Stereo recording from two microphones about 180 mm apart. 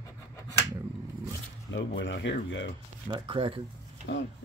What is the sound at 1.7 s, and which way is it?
Speech, 85° left.